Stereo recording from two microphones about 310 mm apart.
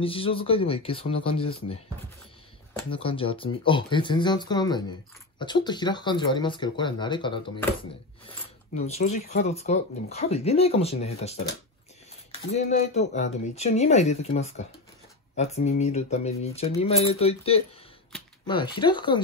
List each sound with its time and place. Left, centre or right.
0.0 s speech: centre
2.9 s speech: centre
8.7 s speech: left